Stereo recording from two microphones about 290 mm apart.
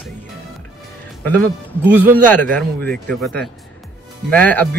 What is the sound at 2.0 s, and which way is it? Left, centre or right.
Speech, centre.